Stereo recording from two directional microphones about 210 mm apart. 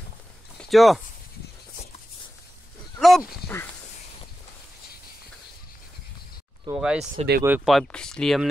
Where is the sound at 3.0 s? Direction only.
Centre (ahead or behind).